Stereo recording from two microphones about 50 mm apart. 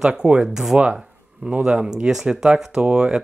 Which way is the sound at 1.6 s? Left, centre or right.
Centre.